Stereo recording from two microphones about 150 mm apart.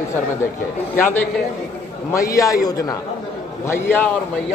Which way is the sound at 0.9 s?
15° left (ahead or behind).